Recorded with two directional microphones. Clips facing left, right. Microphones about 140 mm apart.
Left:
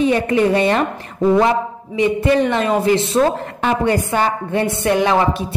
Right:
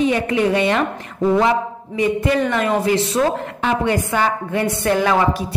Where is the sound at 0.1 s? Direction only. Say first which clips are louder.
Left 2 dB; 35° left (ahead or behind).